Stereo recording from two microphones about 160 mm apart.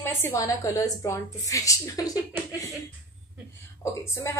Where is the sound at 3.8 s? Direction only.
20° left (ahead or behind).